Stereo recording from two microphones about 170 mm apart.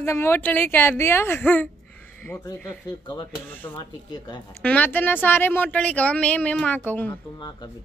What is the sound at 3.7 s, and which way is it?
Speech, 25° left (ahead or behind).